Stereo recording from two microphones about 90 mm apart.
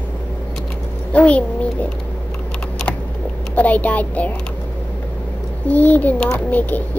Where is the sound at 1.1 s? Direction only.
15° left (ahead or behind).